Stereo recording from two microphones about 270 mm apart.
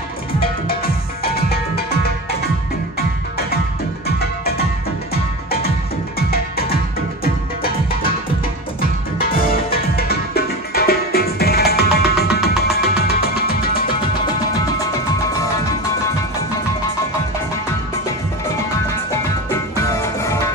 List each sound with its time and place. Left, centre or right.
0.7 s music: left
4.2 s music: left
9.2 s music: left
19.7 s music: centre